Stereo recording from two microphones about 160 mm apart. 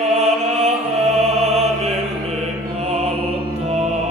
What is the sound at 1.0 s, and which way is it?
Music, centre (ahead or behind).